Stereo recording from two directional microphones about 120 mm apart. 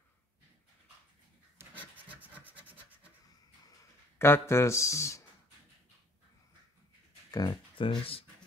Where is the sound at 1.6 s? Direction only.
15° right (ahead or behind).